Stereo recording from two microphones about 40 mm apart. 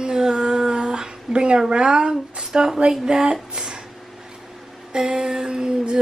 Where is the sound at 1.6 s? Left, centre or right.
Right.